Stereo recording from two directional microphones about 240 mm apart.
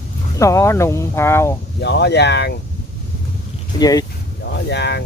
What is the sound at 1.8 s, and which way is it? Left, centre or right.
Speech, left.